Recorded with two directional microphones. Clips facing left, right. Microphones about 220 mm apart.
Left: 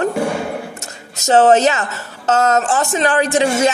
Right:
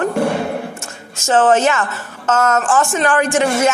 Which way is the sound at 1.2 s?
40° left (ahead or behind).